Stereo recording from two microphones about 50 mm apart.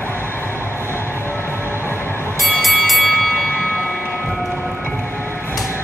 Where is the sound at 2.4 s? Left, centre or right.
Centre.